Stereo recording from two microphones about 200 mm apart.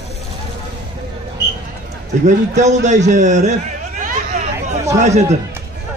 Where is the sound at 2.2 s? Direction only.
35° right (ahead or behind).